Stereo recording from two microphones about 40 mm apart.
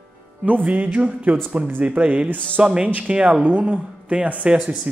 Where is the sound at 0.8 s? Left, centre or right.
Right.